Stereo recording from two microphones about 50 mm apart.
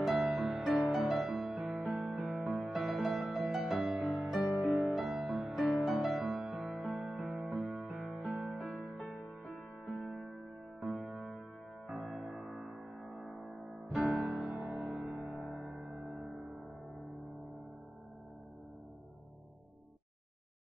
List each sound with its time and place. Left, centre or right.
0.0 s music: centre
10.0 s music: centre
10.9 s music: right
11.1 s music: centre